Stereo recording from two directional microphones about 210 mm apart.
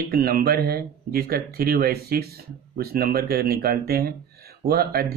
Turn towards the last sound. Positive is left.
turn(degrees=-45)  # may be behind; listen again after turning